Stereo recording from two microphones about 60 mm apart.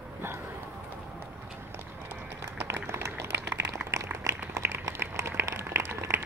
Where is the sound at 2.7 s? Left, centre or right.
Right.